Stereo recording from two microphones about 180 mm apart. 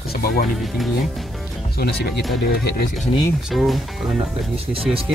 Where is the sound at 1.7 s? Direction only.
60° left (ahead or behind).